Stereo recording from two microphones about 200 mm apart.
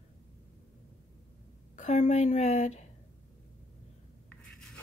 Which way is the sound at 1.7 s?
35° left (ahead or behind).